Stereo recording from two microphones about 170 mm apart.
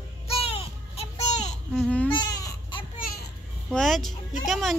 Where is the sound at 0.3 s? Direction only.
35° left (ahead or behind).